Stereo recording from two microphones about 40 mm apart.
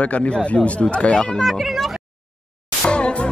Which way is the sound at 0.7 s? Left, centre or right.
Left.